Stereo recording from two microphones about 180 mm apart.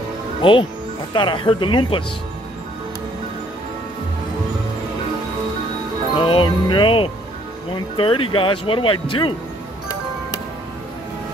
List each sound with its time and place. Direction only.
0.4 s speech: 30° left (ahead or behind)
6.1 s speech: 30° left (ahead or behind)